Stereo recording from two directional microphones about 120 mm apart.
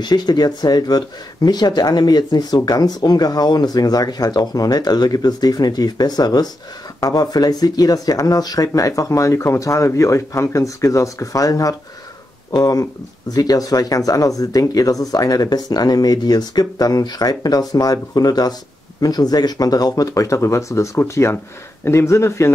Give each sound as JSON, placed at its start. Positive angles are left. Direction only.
{"t": 0.0, "sound": "speech", "side_deg": 35}